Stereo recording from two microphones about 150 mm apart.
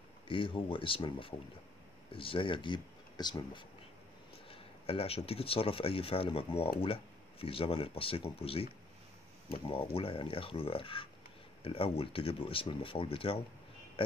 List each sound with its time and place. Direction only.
0.3 s speech: 35° left (ahead or behind)
4.5 s speech: 40° left (ahead or behind)
9.7 s speech: 40° left (ahead or behind)